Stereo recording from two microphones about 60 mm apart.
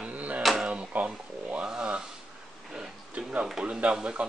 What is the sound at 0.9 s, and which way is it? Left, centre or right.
Speech, right.